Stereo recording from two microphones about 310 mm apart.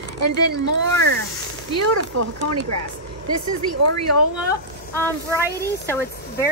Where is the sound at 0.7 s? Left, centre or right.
Right.